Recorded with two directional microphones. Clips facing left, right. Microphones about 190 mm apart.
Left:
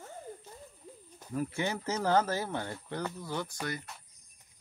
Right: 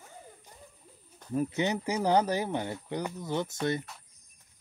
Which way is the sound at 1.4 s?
20° right (ahead or behind).